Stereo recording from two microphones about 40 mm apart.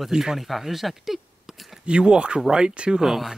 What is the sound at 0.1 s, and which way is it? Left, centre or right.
Speech, centre.